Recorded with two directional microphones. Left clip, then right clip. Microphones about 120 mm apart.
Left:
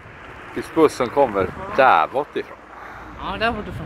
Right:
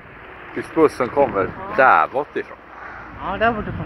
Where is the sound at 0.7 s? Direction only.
20° left (ahead or behind).